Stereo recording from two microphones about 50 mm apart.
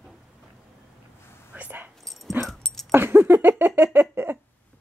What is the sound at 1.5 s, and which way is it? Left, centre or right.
Whispering, right.